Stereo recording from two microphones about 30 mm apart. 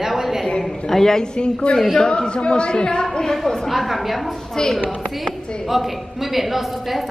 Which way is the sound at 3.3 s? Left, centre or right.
Centre.